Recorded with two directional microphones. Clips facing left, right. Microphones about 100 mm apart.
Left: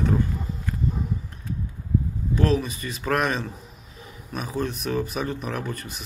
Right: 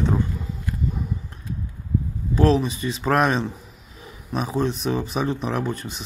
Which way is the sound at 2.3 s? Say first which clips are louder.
Right 4 dB; 30° right (ahead or behind).